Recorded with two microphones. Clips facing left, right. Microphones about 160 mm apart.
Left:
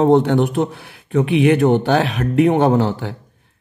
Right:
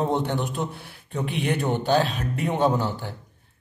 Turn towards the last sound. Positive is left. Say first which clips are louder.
# left 7 dB
turn(degrees=90)